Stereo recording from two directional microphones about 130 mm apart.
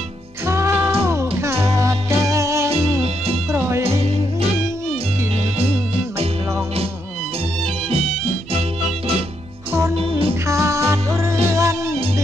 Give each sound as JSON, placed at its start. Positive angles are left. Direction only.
{"t": 0.5, "sound": "music", "side_deg": -20}
{"t": 4.0, "sound": "music", "side_deg": -55}
{"t": 9.7, "sound": "music", "side_deg": -20}
{"t": 9.9, "sound": "music", "side_deg": -45}
{"t": 10.4, "sound": "music", "side_deg": -20}